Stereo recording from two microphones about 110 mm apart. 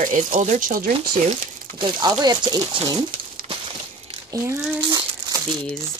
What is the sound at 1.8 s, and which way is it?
Speech, 45° right (ahead or behind).